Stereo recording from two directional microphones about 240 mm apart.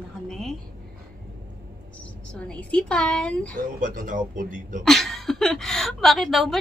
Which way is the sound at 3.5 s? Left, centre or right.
Right.